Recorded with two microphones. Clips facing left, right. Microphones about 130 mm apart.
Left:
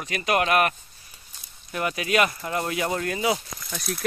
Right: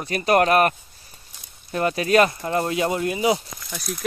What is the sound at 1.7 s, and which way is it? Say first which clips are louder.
Speech: right 6 dB; 35° right (ahead or behind).